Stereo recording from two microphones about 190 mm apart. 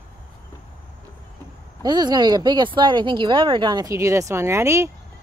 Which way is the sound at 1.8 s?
20° right (ahead or behind).